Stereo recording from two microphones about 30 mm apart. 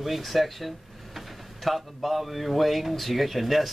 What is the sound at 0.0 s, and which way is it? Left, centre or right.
Speech, centre.